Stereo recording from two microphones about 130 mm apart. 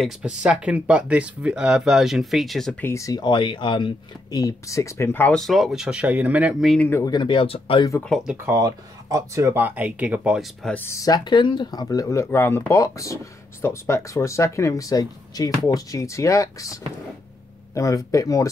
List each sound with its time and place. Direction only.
0.0 s speech: 5° right (ahead or behind)
2.8 s speech: 20° left (ahead or behind)
5.3 s speech: centre (ahead or behind)
6.6 s speech: centre (ahead or behind)
6.9 s speech: 20° left (ahead or behind)
7.2 s speech: 40° left (ahead or behind)
8.0 s speech: 5° left (ahead or behind)
8.3 s speech: 20° right (ahead or behind)
10.6 s speech: 15° left (ahead or behind)